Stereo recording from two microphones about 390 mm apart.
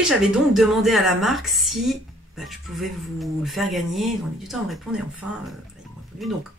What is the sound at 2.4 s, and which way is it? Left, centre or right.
Speech, centre.